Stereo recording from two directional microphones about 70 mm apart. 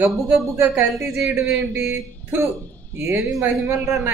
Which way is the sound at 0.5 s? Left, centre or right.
Right.